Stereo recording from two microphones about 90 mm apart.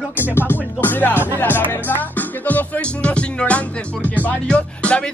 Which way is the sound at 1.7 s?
20° left (ahead or behind).